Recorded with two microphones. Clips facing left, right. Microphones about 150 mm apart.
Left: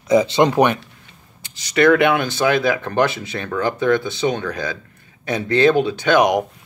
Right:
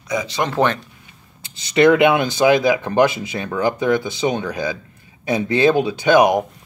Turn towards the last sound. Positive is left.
turn(degrees=-5)  # may be behind; listen again after turning